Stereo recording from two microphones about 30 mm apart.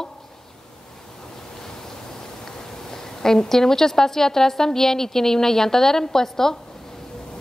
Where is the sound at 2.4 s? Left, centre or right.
Centre.